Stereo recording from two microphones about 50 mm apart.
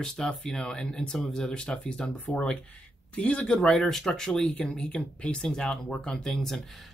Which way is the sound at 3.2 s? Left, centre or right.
Left.